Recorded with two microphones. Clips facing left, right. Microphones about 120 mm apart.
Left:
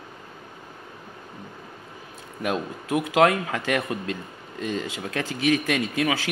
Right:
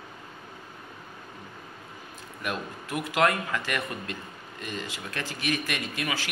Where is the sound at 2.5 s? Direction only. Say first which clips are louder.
Left 7 dB; 90° left.